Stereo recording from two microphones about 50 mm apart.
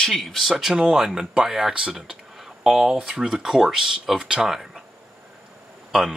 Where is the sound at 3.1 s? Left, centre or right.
Centre.